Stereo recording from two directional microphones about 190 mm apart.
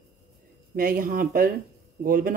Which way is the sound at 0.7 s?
50° right (ahead or behind).